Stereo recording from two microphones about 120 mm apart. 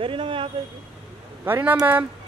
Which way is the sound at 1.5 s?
15° right (ahead or behind).